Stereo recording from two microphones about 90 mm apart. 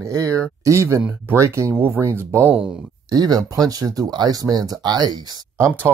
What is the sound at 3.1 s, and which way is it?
Speech, 45° right (ahead or behind).